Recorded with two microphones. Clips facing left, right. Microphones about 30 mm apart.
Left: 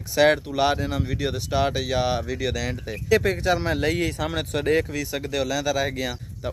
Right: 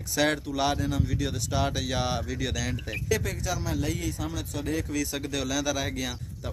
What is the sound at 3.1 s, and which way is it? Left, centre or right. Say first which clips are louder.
Speech: left 10 dB; left.